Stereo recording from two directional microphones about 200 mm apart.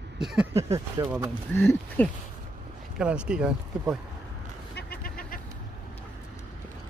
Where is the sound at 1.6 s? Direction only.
10° left (ahead or behind).